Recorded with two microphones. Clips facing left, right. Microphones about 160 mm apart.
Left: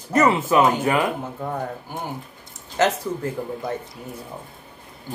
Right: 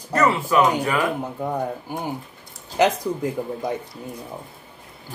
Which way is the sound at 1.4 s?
15° right (ahead or behind).